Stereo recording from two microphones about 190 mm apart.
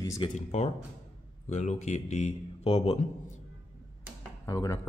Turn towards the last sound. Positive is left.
turn(degrees=15)  # may be behind; listen again after turning